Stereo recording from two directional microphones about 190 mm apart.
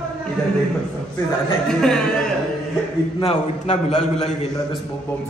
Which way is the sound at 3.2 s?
35° left (ahead or behind).